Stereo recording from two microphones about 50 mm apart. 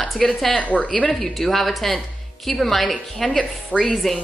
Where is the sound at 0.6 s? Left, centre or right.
Left.